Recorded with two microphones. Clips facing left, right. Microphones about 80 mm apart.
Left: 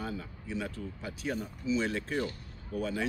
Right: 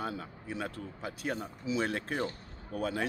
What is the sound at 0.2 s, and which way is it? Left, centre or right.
Speech, right.